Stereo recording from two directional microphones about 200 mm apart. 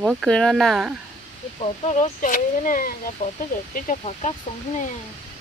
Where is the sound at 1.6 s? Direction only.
40° left (ahead or behind).